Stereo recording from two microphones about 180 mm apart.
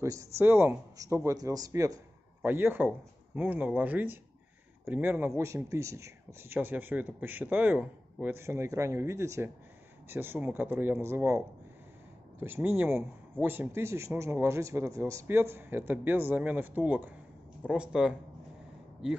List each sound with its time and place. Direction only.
0.0 s speech: 15° right (ahead or behind)